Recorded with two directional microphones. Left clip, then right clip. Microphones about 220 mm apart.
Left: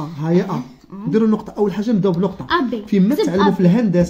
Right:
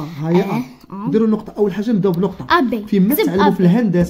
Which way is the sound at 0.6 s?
50° right (ahead or behind).